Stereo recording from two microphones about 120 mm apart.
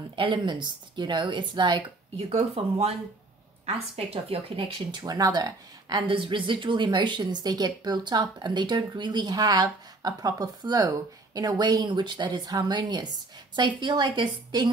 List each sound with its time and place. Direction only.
0.1 s speech: 45° right (ahead or behind)